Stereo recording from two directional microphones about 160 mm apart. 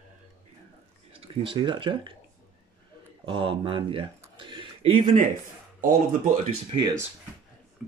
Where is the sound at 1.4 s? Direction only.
30° right (ahead or behind).